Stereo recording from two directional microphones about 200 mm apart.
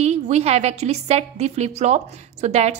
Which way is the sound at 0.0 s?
35° right (ahead or behind).